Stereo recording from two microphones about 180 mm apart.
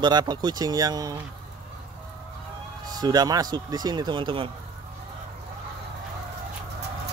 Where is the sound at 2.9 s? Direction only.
20° right (ahead or behind).